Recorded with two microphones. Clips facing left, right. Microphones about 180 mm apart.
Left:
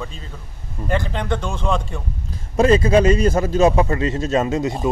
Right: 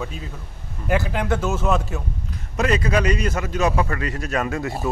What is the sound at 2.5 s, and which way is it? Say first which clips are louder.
A man's voice: left 7 dB; 30° left (ahead or behind).